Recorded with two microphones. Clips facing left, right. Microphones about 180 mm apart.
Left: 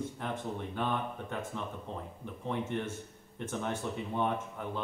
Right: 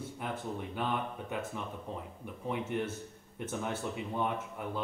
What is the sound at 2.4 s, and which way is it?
A man's voice, 10° right (ahead or behind).